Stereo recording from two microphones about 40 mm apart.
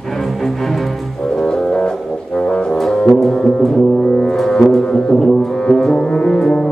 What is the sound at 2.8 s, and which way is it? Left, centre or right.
Music, centre.